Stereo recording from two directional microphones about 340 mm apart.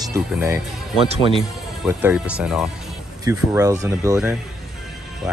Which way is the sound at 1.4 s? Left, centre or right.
Centre.